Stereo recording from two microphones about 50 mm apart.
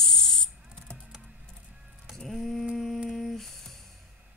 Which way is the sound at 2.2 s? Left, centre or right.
Centre.